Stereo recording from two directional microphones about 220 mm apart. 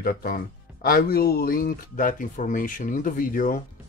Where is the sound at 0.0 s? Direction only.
40° left (ahead or behind).